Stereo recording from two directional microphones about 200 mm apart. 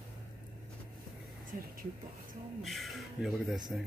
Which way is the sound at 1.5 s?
45° right (ahead or behind).